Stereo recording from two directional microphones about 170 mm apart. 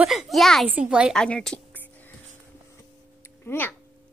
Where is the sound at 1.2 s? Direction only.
5° left (ahead or behind).